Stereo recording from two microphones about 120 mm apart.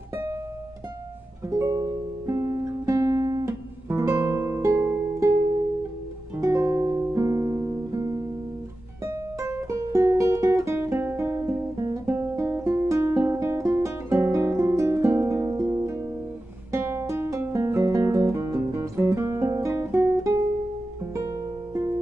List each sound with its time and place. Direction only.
1.5 s music: 25° right (ahead or behind)
6.3 s music: 25° right (ahead or behind)